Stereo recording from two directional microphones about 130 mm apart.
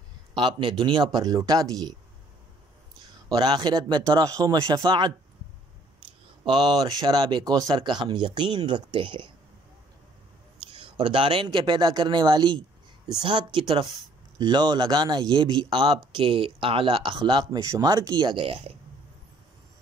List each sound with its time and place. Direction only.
0.3 s speech: 35° right (ahead or behind)
3.3 s speech: 35° right (ahead or behind)
6.4 s speech: 35° right (ahead or behind)
10.7 s speech: 40° right (ahead or behind)